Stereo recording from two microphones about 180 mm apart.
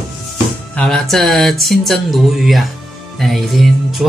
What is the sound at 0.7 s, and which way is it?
Speech, 5° left (ahead or behind).